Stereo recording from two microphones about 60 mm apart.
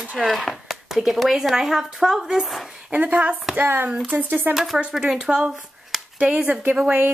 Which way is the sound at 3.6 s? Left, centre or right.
Right.